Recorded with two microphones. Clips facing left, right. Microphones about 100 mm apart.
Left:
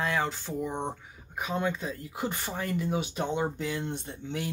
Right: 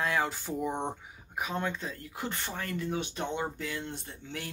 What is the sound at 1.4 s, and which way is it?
Speech, centre (ahead or behind).